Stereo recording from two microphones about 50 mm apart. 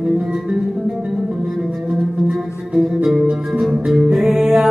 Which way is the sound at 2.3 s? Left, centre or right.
Centre.